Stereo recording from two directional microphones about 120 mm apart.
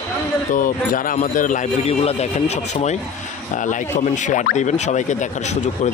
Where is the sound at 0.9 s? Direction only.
90° left; by 3.0 s 65° left (ahead or behind).